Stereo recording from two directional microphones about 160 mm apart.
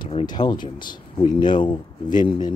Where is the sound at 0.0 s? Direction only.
30° left (ahead or behind).